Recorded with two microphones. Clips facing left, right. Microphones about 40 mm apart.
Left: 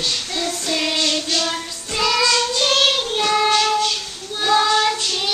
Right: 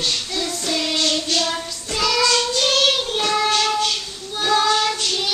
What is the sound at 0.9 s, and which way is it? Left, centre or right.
Child singing, centre.